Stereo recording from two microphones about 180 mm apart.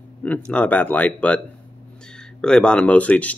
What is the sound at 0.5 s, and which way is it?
Speech, 10° left (ahead or behind).